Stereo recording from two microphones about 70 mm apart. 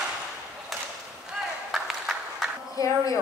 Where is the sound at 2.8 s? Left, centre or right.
Left.